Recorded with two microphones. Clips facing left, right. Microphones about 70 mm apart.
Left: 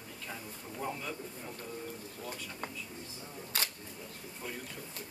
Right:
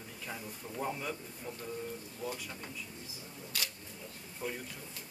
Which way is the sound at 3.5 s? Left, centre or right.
Left.